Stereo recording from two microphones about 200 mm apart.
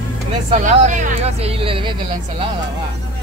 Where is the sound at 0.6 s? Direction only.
35° right (ahead or behind).